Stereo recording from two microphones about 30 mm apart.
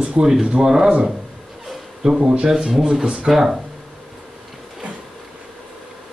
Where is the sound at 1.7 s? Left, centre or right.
Centre.